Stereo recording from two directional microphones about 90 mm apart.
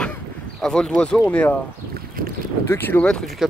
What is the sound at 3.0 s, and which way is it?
Speech, 5° left (ahead or behind).